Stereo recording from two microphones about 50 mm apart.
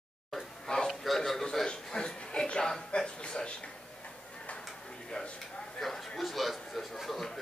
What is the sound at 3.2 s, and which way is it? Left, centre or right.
Speech, left.